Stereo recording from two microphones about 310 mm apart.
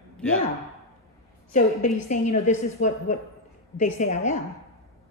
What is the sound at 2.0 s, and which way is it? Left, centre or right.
A woman's voice, left.